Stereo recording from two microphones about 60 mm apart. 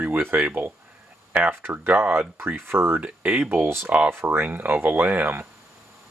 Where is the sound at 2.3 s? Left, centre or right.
Right.